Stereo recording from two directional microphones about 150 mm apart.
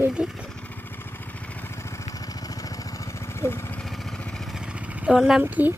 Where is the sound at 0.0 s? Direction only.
5° right (ahead or behind).